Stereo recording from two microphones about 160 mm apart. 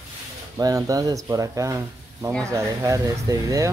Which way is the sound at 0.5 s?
20° right (ahead or behind).